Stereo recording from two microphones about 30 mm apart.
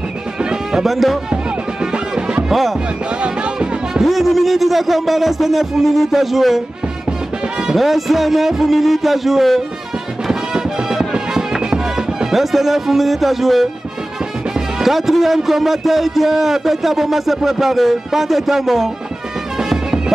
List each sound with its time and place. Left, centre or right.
0.4 s music: right
0.8 s speech: centre
1.3 s music: right
2.5 s speech: centre
3.2 s music: right
4.0 s speech: centre
7.8 s speech: centre
10.5 s music: right
12.3 s speech: centre
14.8 s speech: centre
19.6 s music: centre